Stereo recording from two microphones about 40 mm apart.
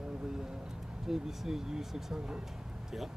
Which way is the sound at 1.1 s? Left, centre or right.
Centre.